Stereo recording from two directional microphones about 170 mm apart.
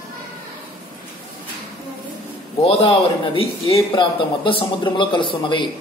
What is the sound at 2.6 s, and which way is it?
A man's voice, 35° left (ahead or behind).